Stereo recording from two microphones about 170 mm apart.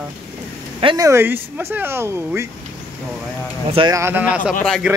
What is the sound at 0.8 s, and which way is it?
Speech, 30° right (ahead or behind).